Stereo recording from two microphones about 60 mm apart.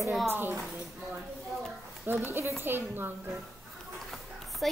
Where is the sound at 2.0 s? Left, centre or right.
Right.